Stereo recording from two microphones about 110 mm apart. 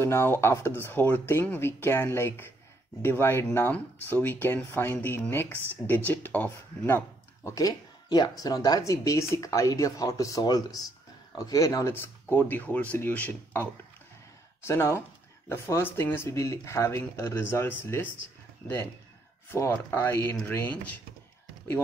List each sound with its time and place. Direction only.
0.0 s speech: 20° left (ahead or behind)
7.4 s speech: 35° left (ahead or behind)
11.9 s speech: 20° left (ahead or behind)
19.5 s speech: 20° left (ahead or behind)